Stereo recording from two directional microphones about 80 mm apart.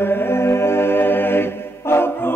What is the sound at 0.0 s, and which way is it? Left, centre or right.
A capella, left.